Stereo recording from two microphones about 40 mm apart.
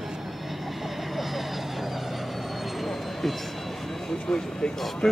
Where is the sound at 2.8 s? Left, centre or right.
Centre.